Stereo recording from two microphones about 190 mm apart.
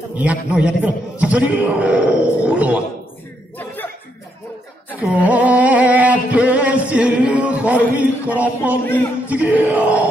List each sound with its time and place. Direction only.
0.2 s a man's voice: 5° right (ahead or behind)
3.5 s chuckle: 10° left (ahead or behind)
5.0 s music: 10° right (ahead or behind)
8.3 s a man's voice: 10° right (ahead or behind)
8.8 s a man's voice: 10° left (ahead or behind)
9.3 s a man's voice: 10° right (ahead or behind)